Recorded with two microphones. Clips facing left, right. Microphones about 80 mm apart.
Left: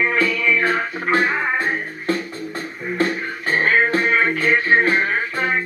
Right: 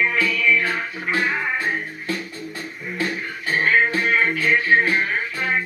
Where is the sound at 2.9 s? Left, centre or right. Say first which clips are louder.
Left 5 dB; left.